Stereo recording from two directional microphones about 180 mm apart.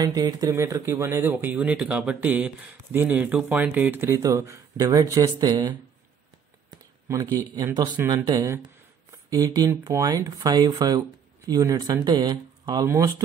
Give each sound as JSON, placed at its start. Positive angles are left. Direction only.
{"t": 0.0, "sound": "speech", "side_deg": -20}
{"t": 6.7, "sound": "a sound", "side_deg": -20}
{"t": 7.3, "sound": "speech", "side_deg": -20}